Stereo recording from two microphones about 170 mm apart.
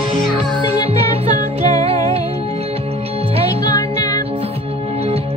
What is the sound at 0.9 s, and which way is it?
Music, 35° right (ahead or behind).